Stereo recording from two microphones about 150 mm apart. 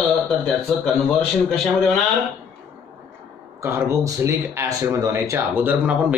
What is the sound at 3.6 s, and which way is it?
Speech, 20° right (ahead or behind).